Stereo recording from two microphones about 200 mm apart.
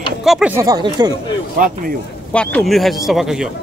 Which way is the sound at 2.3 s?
5° left (ahead or behind).